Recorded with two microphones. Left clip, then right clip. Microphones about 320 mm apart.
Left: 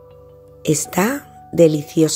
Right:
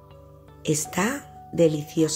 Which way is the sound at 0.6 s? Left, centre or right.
Centre.